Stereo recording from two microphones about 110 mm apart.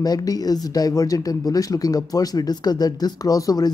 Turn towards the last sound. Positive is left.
turn(degrees=35)  # may be behind; listen again after turning